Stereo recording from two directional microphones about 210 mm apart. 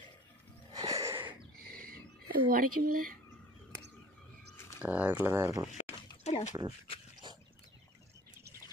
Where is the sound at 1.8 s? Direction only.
40° right (ahead or behind).